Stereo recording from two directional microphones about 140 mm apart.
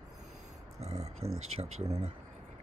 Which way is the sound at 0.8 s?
50° right (ahead or behind).